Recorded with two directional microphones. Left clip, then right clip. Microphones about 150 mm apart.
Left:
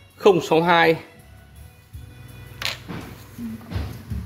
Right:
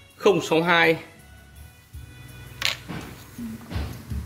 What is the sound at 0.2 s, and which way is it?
Speech, 30° left (ahead or behind).